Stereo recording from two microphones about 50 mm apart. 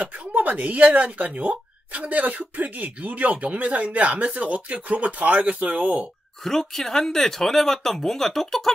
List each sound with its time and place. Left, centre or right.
0.0 s speech: right
6.4 s speech: centre